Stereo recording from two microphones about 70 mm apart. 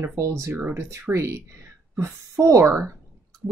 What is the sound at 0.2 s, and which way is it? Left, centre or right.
Speech, right.